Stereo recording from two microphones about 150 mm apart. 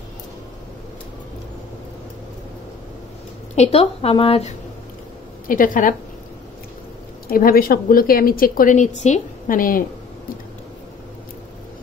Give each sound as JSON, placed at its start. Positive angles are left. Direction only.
{"t": 3.5, "sound": "a woman's voice", "side_deg": 45}
{"t": 5.5, "sound": "a woman's voice", "side_deg": 65}
{"t": 7.2, "sound": "a woman's voice", "side_deg": 75}